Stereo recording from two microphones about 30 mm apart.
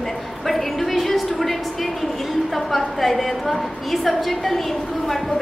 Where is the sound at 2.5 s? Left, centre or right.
Centre.